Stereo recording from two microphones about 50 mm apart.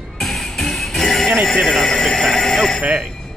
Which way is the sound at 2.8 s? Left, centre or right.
Centre.